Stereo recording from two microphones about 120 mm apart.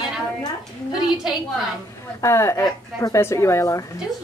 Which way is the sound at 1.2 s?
5° right (ahead or behind).